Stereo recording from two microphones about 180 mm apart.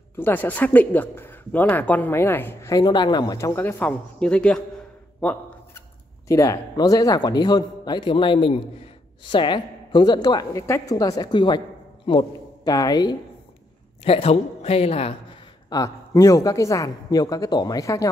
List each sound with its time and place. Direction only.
0.1 s speech: 10° left (ahead or behind)
6.2 s a woman's voice: 15° left (ahead or behind)
14.0 s speech: 30° left (ahead or behind)
15.7 s a woman's voice: 20° left (ahead or behind)